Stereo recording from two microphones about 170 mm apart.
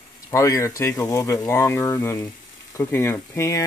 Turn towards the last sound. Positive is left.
turn(degrees=15)  # may be behind; listen again after turning